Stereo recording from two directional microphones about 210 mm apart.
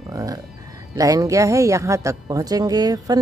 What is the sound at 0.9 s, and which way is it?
Speech, 15° right (ahead or behind).